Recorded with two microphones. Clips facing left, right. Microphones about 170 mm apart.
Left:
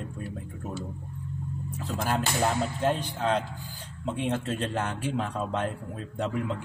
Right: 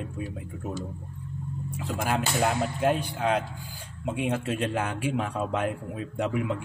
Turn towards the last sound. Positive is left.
turn(degrees=-10)  # may be behind; listen again after turning